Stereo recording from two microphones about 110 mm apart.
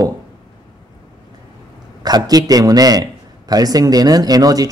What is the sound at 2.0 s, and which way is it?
Speech, 35° right (ahead or behind).